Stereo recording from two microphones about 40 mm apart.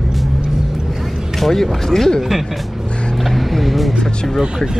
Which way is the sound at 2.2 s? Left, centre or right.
Centre.